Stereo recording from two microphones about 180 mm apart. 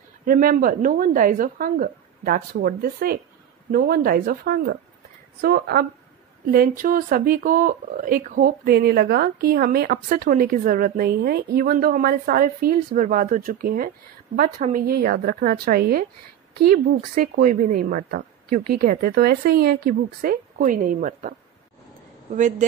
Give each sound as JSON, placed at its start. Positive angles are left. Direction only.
{"t": 0.2, "sound": "speech", "side_deg": -50}
{"t": 16.7, "sound": "speech", "side_deg": -45}